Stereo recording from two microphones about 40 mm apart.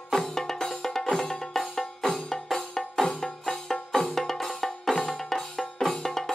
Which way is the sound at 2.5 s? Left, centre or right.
Centre.